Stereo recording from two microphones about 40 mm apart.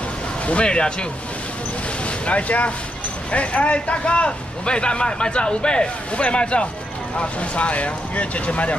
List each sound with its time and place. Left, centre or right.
0.5 s speech: left
2.0 s speech: left